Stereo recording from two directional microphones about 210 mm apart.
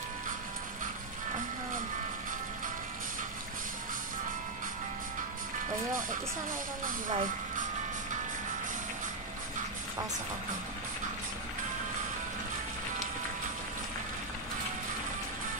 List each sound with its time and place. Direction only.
6.8 s speech: 40° right (ahead or behind)